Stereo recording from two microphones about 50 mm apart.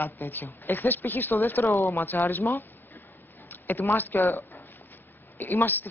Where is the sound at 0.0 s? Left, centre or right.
Left.